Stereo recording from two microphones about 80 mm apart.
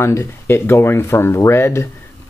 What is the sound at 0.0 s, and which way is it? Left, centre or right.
Speech, left.